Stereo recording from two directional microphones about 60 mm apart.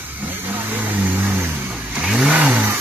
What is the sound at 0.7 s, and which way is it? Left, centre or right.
Vehicle, right.